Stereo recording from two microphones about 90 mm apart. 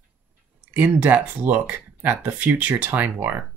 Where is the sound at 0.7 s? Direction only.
20° right (ahead or behind).